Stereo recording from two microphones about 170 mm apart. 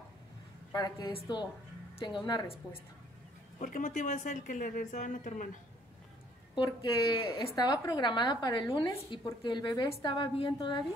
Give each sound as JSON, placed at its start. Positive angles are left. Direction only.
{"t": 0.7, "sound": "a woman's voice", "side_deg": 20}
{"t": 3.5, "sound": "speech", "side_deg": 50}
{"t": 6.5, "sound": "a woman's voice", "side_deg": 25}